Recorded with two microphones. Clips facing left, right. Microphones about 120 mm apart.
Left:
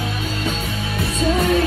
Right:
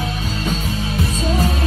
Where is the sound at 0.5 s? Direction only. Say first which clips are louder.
Right 3 dB; 60° left (ahead or behind).